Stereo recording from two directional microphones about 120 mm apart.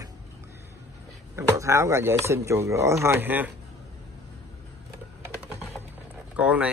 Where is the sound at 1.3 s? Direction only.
25° right (ahead or behind).